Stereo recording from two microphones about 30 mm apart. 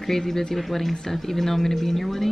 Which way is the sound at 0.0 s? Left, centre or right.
Centre.